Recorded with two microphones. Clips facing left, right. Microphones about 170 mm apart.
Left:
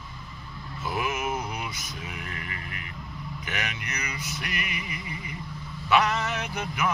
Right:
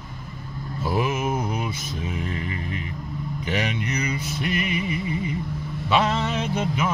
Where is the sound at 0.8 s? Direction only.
30° right (ahead or behind).